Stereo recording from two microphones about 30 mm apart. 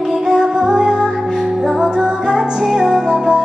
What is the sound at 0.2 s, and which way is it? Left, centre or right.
Music, right.